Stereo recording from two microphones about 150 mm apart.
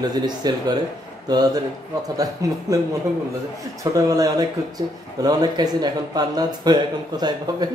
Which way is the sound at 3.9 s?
25° right (ahead or behind).